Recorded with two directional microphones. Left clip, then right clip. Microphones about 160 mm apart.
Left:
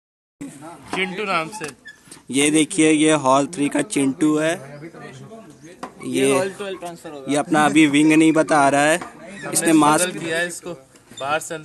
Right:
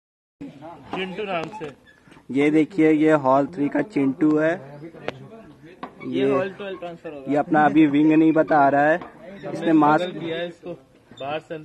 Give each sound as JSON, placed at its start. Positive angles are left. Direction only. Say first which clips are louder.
{"t": 1.0, "sound": "speech", "louder": "left 5 dB", "side_deg": -20}
{"t": 2.3, "sound": "speech", "louder": "left 1 dB", "side_deg": 25}
{"t": 6.4, "sound": "a man's voice", "louder": "left 3 dB", "side_deg": 0}
{"t": 7.2, "sound": "speech", "louder": "left 1 dB", "side_deg": 20}
{"t": 10.3, "sound": "speech", "louder": "left 5 dB", "side_deg": -20}